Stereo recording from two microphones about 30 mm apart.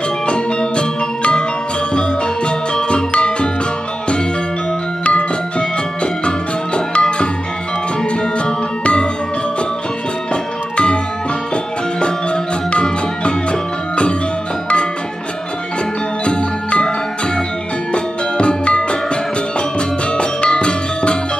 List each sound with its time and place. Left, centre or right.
0.3 s music: left
6.9 s music: left
10.3 s music: left
16.3 s jingle bell: left
17.9 s music: left
20.2 s music: left